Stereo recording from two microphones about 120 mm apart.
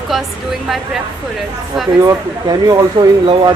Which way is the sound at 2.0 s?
30° right (ahead or behind).